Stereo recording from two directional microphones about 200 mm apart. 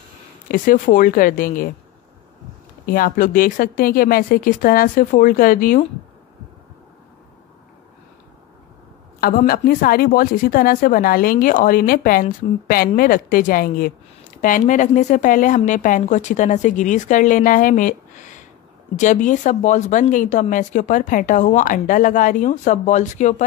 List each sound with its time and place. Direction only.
0.5 s a woman's voice: 40° left (ahead or behind)
2.9 s a woman's voice: 45° left (ahead or behind)
9.2 s a woman's voice: 45° left (ahead or behind)